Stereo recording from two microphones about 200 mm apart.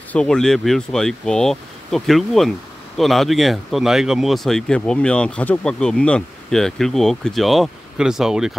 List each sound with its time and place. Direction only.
0.1 s speech: 5° left (ahead or behind)